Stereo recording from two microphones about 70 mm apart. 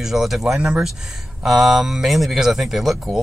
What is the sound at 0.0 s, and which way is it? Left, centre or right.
Speech, centre.